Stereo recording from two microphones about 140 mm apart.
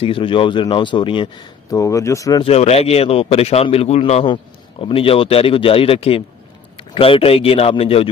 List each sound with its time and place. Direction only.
0.0 s a man's voice: 40° left (ahead or behind)
2.4 s a man's voice: 45° left (ahead or behind)